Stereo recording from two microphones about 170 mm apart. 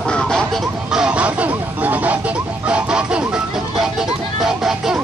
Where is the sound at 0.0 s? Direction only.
5° left (ahead or behind).